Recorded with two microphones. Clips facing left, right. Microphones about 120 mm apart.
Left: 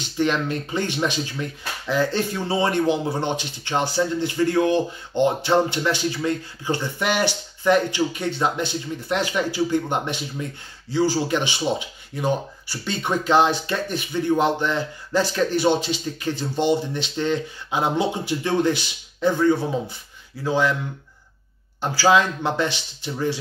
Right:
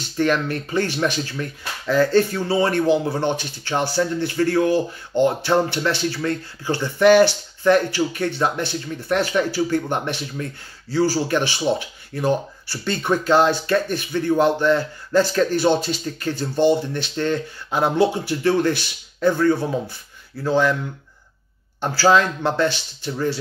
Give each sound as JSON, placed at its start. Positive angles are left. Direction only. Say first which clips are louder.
{"t": 0.2, "sound": "speech", "louder": "right 2 dB", "side_deg": 20}
{"t": 21.9, "sound": "speech", "louder": "right 1 dB", "side_deg": 15}